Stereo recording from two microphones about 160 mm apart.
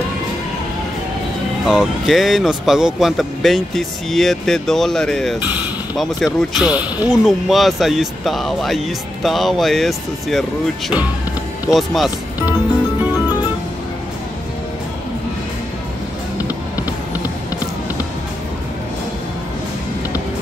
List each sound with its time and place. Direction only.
1.7 s speech: 5° right (ahead or behind)
11.7 s speech: centre (ahead or behind)
16.4 s music: 20° left (ahead or behind)